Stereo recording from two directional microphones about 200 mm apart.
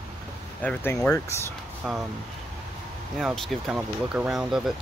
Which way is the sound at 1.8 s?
Centre (ahead or behind).